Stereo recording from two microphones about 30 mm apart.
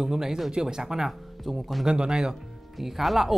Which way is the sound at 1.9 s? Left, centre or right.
Right.